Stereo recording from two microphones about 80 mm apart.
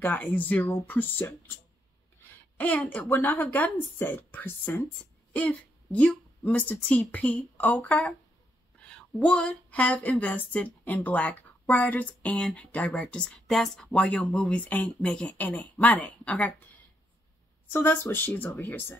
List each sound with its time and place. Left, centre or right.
0.0 s a woman's voice: left
2.5 s a woman's voice: centre
17.7 s a woman's voice: left